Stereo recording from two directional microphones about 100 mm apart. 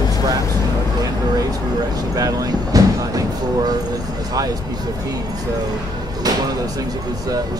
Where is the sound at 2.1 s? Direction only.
35° right (ahead or behind).